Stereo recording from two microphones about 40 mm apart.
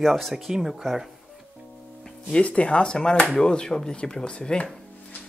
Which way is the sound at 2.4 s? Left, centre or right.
Left.